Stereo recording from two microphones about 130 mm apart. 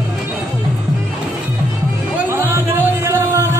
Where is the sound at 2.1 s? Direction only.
20° right (ahead or behind).